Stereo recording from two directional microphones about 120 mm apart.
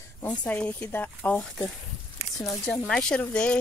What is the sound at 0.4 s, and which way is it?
Speech, 15° left (ahead or behind).